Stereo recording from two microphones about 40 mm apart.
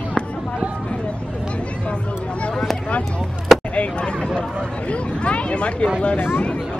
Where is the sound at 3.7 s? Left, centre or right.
Left.